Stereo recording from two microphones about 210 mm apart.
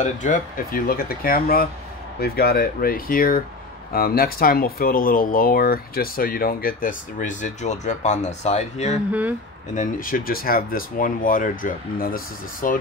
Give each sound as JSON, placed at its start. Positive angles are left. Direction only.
{"t": 0.0, "sound": "speech", "side_deg": 35}